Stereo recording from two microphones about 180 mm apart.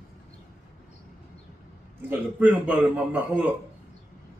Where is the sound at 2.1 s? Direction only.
10° right (ahead or behind).